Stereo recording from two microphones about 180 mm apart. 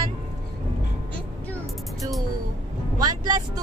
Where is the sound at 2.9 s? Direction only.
20° right (ahead or behind).